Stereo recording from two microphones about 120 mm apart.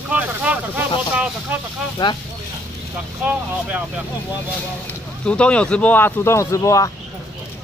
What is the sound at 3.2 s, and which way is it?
Speech, 10° right (ahead or behind).